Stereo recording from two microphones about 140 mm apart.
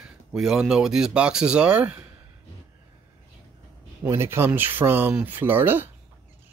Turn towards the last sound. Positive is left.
turn(degrees=-15)  # may be behind; listen again after turning